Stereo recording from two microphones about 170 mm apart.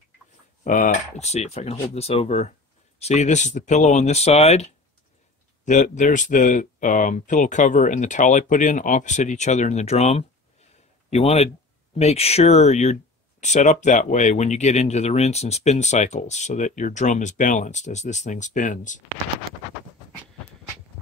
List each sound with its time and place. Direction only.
0.7 s speech: 50° left (ahead or behind)